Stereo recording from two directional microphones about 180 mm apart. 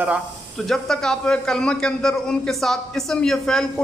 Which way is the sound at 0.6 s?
5° left (ahead or behind).